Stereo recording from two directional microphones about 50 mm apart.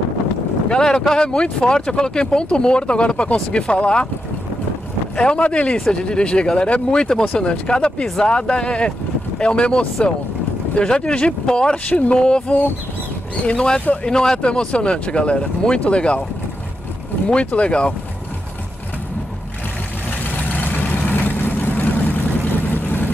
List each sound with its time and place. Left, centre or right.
0.7 s speech: centre
5.1 s speech: centre
17.3 s speech: left
20.6 s vehicle: left